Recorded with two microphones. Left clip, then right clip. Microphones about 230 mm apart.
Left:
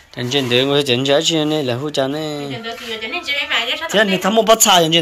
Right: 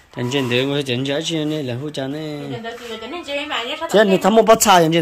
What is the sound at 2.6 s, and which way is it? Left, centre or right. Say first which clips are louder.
A woman's voice: left 4 dB; right.